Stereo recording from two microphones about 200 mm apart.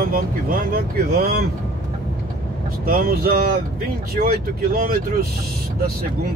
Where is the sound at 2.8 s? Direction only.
45° right (ahead or behind).